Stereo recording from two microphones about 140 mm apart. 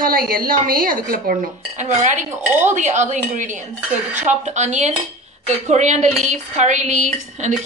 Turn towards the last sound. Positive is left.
turn(degrees=-60)  # may be behind; listen again after turning